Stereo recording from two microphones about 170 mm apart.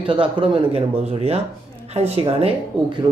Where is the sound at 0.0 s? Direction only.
30° right (ahead or behind).